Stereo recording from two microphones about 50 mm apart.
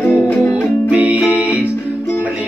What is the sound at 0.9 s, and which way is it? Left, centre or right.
Music, right.